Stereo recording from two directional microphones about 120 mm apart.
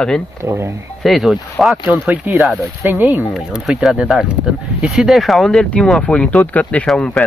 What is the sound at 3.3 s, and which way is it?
Speech, 5° right (ahead or behind).